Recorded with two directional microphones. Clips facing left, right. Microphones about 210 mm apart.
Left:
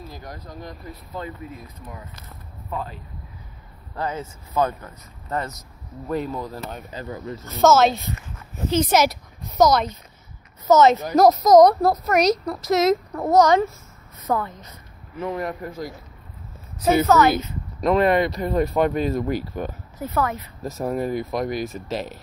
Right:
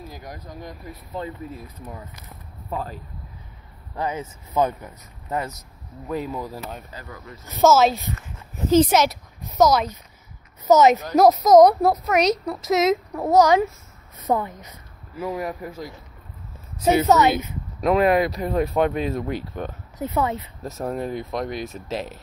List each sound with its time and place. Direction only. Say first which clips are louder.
0.1 s speech: even; 15° right (ahead or behind)
3.9 s speech: right 1 dB; 15° right (ahead or behind)
6.9 s speech: left 8 dB; 25° left (ahead or behind)
7.4 s speech: even; 5° right (ahead or behind)
15.1 s speech: left 1 dB; 5° right (ahead or behind)
17.0 s speech: left 1 dB; 20° right (ahead or behind)
17.7 s speech: even; centre (ahead or behind)
20.0 s speech: right 1 dB; 20° right (ahead or behind)
20.6 s speech: left 3 dB; centre (ahead or behind)